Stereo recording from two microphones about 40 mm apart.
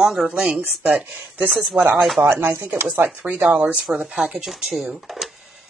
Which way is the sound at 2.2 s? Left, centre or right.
Right.